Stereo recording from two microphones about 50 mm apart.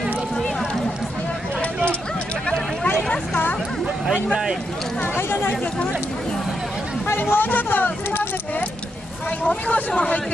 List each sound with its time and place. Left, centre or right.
4.3 s speech: centre
5.1 s speech: left
7.3 s speech: left
9.7 s speech: left